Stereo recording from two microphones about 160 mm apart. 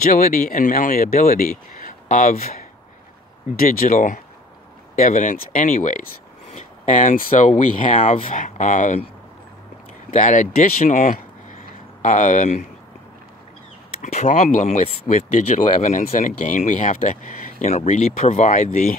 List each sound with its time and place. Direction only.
0.0 s speech: 65° left (ahead or behind)
10.1 s speech: 50° left (ahead or behind)
14.0 s speech: 50° left (ahead or behind)